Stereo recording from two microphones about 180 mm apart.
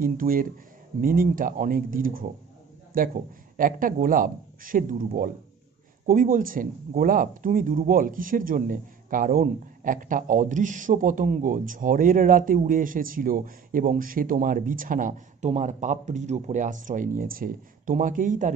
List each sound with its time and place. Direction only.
0.0 s a man's voice: 55° right (ahead or behind)